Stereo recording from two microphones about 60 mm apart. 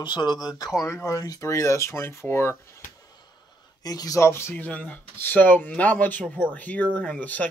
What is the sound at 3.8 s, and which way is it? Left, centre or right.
Speech, left.